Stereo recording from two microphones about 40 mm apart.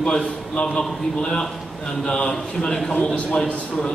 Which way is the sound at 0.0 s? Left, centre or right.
Centre.